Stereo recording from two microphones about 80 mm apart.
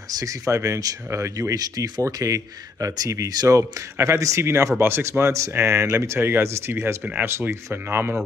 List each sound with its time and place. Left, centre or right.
0.1 s speech: right
7.0 s speech: centre
7.2 s speech: right